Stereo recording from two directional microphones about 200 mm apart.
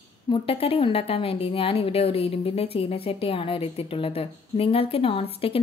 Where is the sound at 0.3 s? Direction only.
30° left (ahead or behind).